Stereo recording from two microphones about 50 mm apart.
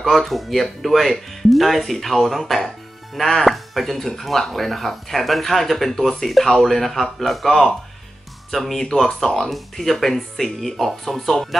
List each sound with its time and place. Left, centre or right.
0.0 s speech: centre